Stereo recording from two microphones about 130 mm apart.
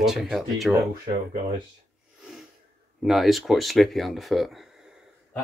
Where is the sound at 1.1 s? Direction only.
55° right (ahead or behind).